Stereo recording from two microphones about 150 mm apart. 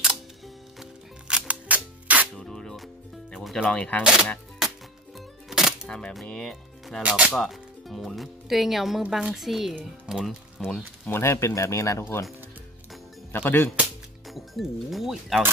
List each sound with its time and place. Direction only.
0.7 s music: 5° right (ahead or behind)
2.3 s music: 5° left (ahead or behind)
3.3 s speech: centre (ahead or behind)
4.0 s speech: 5° right (ahead or behind)
5.5 s music: 5° right (ahead or behind)
7.0 s speech: 10° right (ahead or behind)
11.1 s speech: 15° left (ahead or behind)
13.3 s speech: 15° left (ahead or behind)
14.3 s speech: centre (ahead or behind)